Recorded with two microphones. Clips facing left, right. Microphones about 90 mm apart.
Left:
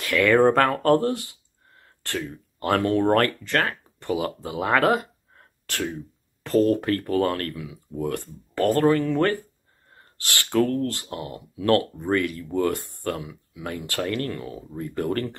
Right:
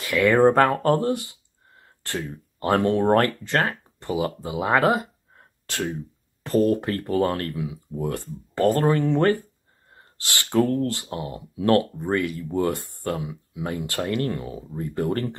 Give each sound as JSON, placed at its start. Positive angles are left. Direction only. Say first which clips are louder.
{"t": 0.0, "sound": "speech", "louder": "right 1 dB", "side_deg": -15}
{"t": 7.9, "sound": "speech", "louder": "left 3 dB", "side_deg": -10}